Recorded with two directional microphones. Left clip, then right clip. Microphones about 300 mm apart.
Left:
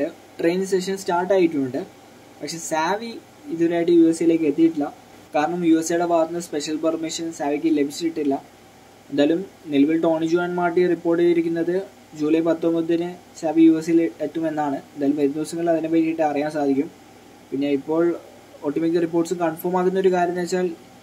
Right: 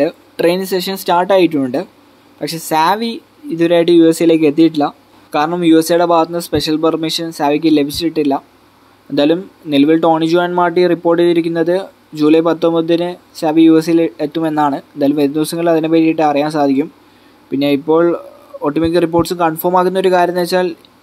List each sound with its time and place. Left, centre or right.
0.0 s speech: right